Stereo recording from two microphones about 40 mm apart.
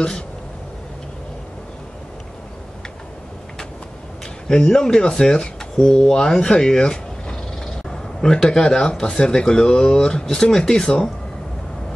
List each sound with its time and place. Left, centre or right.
4.5 s speech: centre